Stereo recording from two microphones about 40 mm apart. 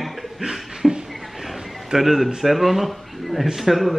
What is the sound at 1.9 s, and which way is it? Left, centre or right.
Speech, centre.